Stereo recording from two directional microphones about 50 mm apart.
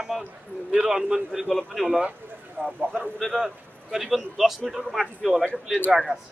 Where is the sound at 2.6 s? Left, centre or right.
Right.